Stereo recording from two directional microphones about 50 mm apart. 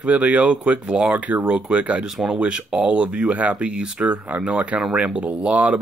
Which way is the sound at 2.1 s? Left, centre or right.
Centre.